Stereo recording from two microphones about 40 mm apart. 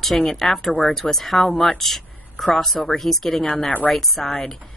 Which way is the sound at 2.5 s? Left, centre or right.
Centre.